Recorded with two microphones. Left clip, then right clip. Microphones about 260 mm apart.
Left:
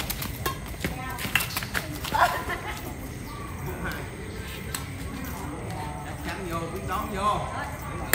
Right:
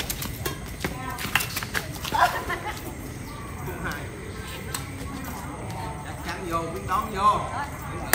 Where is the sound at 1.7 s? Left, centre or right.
Centre.